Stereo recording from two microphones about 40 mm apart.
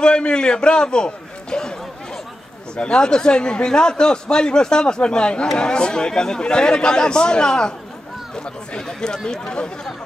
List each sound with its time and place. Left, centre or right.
0.0 s a man's voice: left
8.7 s speech: centre